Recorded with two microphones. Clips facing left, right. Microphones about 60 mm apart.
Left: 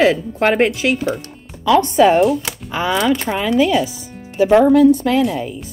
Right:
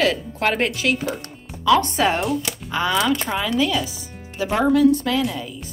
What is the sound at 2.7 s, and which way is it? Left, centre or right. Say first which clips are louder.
A woman's voice: left 3 dB; centre.